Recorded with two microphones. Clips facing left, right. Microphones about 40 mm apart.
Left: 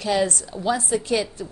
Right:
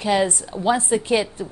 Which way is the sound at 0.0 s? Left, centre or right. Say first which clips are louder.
Right 2 dB; right.